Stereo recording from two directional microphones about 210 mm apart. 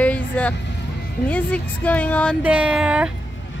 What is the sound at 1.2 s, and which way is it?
Speech, 5° left (ahead or behind).